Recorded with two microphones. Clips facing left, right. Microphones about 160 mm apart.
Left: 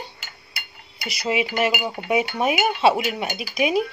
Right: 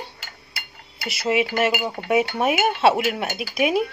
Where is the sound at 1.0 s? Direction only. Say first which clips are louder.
Right 2 dB; 5° right (ahead or behind).